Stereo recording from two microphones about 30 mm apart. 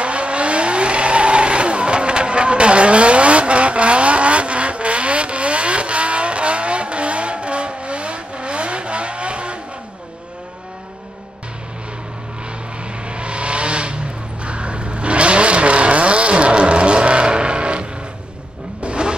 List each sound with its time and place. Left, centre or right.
0.0 s vehicle: right
13.1 s vehicle: right